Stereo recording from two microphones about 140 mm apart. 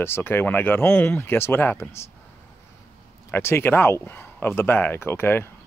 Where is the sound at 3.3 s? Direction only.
15° left (ahead or behind).